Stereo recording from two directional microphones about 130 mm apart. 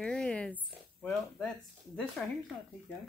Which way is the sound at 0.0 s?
5° left (ahead or behind).